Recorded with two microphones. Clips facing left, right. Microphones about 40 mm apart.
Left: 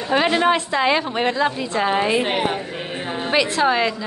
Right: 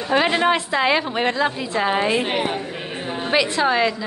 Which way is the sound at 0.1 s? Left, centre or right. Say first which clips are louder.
Left 1 dB; centre.